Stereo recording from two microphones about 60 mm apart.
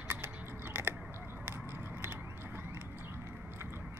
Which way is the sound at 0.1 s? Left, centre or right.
Right.